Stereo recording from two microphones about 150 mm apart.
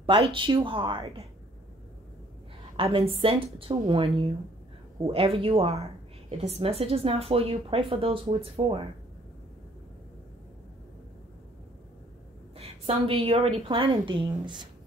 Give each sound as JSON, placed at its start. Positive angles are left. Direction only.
{"t": 0.0, "sound": "speech", "side_deg": -35}
{"t": 2.8, "sound": "speech", "side_deg": -40}
{"t": 12.5, "sound": "speech", "side_deg": -40}